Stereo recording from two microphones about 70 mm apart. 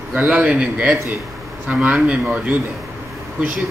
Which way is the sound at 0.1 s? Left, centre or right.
Right.